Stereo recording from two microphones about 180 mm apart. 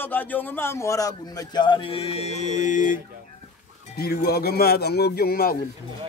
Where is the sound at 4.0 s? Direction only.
60° left (ahead or behind).